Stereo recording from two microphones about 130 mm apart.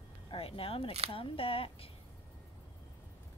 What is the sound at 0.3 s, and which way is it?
A woman's voice, 45° left (ahead or behind).